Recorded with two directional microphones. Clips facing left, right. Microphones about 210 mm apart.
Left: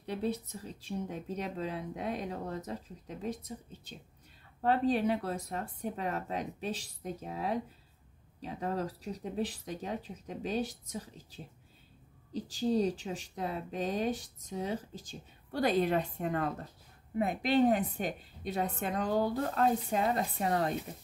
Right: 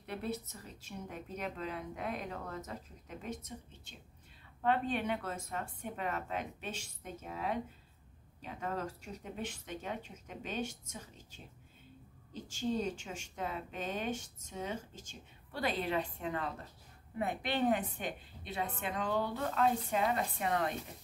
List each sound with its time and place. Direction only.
0.0 s speech: 35° left (ahead or behind)
17.2 s speech: 35° left (ahead or behind)